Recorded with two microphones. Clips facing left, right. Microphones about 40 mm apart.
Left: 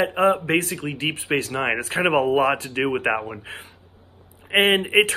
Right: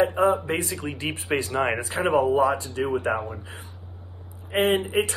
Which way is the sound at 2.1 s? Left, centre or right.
Left.